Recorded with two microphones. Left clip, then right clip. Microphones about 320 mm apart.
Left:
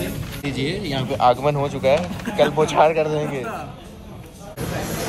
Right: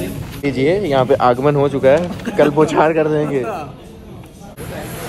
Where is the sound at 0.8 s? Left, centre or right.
Centre.